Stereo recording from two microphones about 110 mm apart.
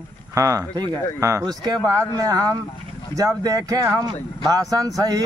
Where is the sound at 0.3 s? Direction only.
30° right (ahead or behind).